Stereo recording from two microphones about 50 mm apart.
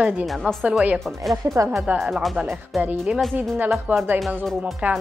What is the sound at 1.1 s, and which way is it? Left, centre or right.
Speech, centre.